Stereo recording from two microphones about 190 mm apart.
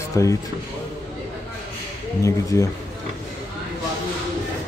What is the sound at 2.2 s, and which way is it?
Speech, 15° left (ahead or behind).